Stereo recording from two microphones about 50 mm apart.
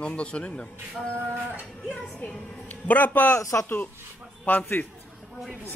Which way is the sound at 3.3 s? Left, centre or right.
Left.